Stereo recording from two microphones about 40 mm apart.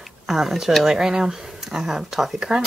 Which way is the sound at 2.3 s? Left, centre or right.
Centre.